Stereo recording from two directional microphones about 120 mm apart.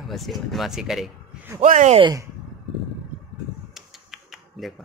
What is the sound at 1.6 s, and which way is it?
Speech, 85° right.